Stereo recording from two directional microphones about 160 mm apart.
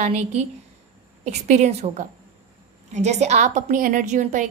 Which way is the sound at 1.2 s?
45° right (ahead or behind).